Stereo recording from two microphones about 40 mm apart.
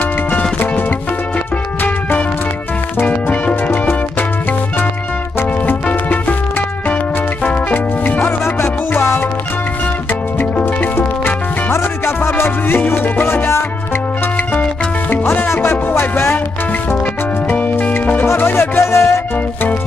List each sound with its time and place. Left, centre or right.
3.1 s music: left
5.9 s music: left
7.4 s music: left
8.3 s music: left
11.0 s music: left
15.4 s music: left
17.5 s music: left
18.2 s music: left